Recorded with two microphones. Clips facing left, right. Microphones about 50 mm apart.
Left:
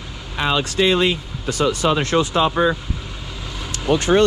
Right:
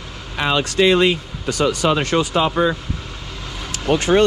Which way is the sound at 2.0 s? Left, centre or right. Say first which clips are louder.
Even; right.